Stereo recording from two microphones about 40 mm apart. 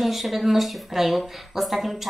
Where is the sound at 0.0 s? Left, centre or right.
Centre.